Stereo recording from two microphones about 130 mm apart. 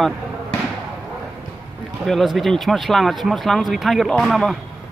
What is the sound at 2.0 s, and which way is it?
Speech, centre (ahead or behind).